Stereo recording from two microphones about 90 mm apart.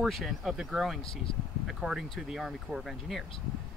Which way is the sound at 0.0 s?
Centre (ahead or behind).